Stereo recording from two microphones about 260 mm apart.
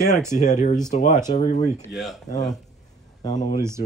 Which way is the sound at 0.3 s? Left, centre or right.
Left.